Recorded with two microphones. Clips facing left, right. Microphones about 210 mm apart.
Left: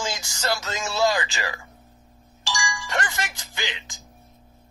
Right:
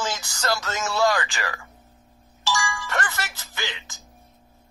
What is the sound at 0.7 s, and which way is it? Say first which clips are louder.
Speech: even; 15° left (ahead or behind).